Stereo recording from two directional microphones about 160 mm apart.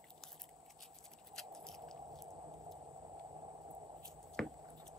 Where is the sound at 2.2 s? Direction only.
25° right (ahead or behind).